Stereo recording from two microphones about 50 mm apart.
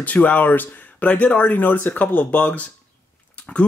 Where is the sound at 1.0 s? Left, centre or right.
Left.